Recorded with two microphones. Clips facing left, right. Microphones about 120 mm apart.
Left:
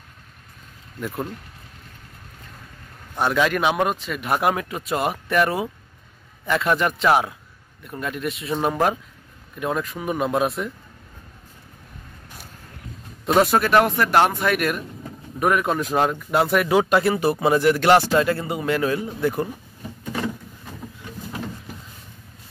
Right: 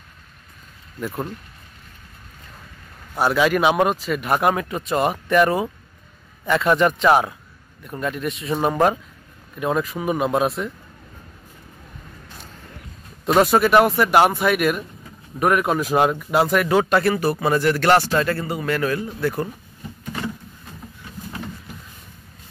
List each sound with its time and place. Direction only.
1.0 s a man's voice: 5° right (ahead or behind)
3.2 s a man's voice: 5° right (ahead or behind)
13.2 s a man's voice: centre (ahead or behind)
17.1 s a man's voice: 20° left (ahead or behind)